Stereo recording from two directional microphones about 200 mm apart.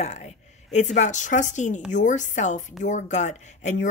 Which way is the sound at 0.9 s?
35° left (ahead or behind).